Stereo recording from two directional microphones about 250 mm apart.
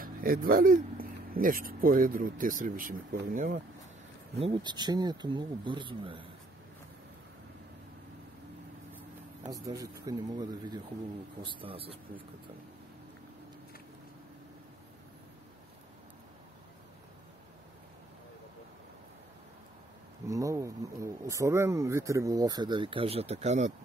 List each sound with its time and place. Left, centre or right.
0.0 s speech: right
4.4 s speech: centre
9.4 s a man's voice: centre
20.2 s speech: centre